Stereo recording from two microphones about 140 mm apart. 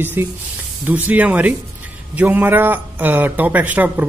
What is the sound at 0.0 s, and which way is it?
A man's voice, 15° right (ahead or behind).